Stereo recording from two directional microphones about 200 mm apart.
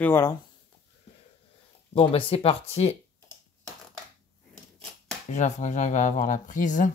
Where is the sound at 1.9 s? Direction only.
30° left (ahead or behind).